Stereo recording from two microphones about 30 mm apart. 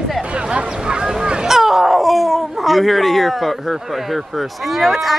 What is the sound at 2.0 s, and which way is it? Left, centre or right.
Speech, centre.